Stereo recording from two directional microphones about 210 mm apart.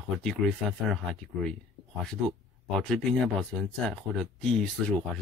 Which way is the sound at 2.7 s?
Centre (ahead or behind).